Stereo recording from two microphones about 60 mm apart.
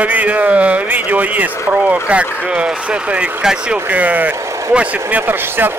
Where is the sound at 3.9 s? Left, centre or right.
Right.